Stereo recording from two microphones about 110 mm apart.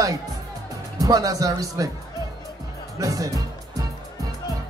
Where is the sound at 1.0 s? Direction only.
30° right (ahead or behind).